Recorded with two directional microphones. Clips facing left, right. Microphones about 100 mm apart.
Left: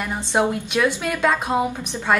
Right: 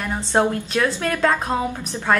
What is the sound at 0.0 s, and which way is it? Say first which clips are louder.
A woman's voice: right 1 dB; 15° left (ahead or behind).